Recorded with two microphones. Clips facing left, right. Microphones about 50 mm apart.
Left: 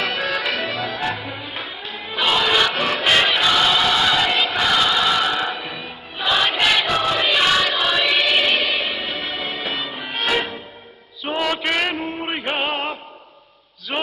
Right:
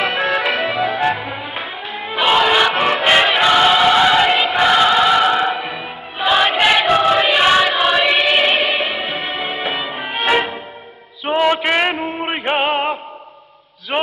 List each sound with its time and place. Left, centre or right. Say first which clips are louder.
0.0 s accordion: right 5 dB; right
0.8 s music: right 7 dB; right
3.1 s choir: right 3 dB; right
4.6 s music: right 7 dB; right
6.2 s choir: right 5 dB; right
9.2 s music: right 4 dB; right
11.2 s a sound: right 6 dB; right
12.1 s music: right 4 dB; centre
12.4 s music: right 6 dB; right